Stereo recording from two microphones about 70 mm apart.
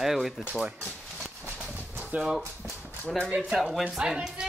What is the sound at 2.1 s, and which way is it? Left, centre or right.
Speech, right.